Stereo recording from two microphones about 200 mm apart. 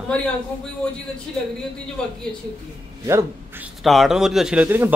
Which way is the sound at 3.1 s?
15° right (ahead or behind).